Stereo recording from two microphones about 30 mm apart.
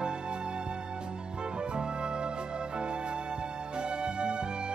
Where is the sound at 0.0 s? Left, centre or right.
Right.